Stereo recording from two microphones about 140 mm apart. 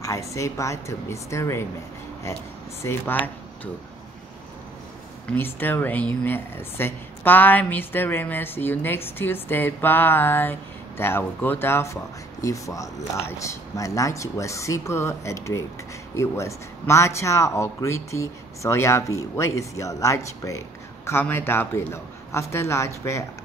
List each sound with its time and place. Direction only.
0.0 s speech: 20° left (ahead or behind)
2.8 s a woman's voice: 15° left (ahead or behind)
5.2 s a woman's voice: 15° left (ahead or behind)